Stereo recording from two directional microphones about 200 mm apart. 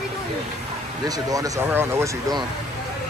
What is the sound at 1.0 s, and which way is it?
Speech, 20° right (ahead or behind).